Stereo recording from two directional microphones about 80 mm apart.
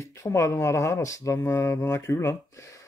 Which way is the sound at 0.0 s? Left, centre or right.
Left.